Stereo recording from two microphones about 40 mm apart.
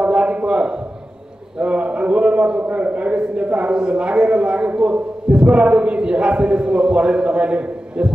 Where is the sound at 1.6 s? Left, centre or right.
Right.